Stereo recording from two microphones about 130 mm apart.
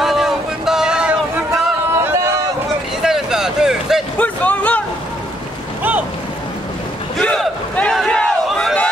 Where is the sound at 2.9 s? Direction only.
5° right (ahead or behind).